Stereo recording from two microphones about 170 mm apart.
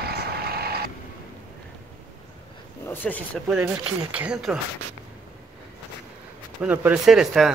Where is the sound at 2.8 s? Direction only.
10° left (ahead or behind).